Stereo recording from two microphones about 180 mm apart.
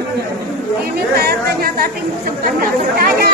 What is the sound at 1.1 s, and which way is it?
Speech, 55° right (ahead or behind).